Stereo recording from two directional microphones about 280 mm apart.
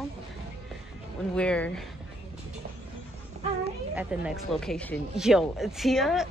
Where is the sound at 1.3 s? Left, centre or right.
Centre.